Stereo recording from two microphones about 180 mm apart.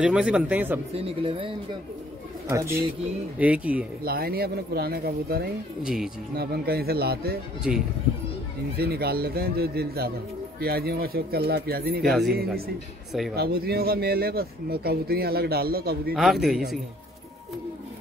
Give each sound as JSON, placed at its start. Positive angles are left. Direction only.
{"t": 0.0, "sound": "speech", "side_deg": -5}
{"t": 0.9, "sound": "speech", "side_deg": -30}
{"t": 2.5, "sound": "speech", "side_deg": -15}
{"t": 4.0, "sound": "a man's voice", "side_deg": -55}
{"t": 8.7, "sound": "a man's voice", "side_deg": -60}
{"t": 12.0, "sound": "speech", "side_deg": 0}
{"t": 13.4, "sound": "a man's voice", "side_deg": -60}
{"t": 16.1, "sound": "speech", "side_deg": 0}